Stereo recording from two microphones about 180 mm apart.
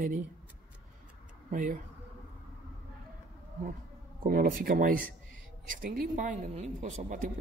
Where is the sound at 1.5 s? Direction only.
50° right (ahead or behind).